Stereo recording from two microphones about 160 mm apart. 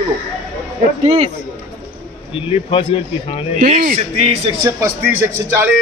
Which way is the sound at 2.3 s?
35° left (ahead or behind).